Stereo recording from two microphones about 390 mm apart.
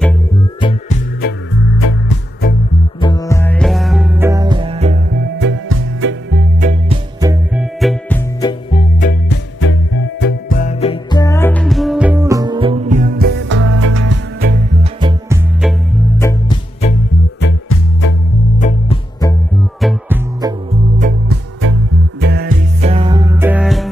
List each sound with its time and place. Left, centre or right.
0.6 s music: centre
1.7 s music: left
3.0 s music: centre
10.2 s music: left; by 14.1 s right
14.4 s music: right
15.0 s music: centre
16.2 s music: centre
17.4 s music: left
18.6 s music: centre
19.8 s music: centre
20.7 s music: centre
22.2 s music: right; by 23.9 s centre